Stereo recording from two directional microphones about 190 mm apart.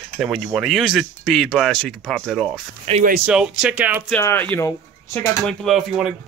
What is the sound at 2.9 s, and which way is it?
Speech, 30° right (ahead or behind).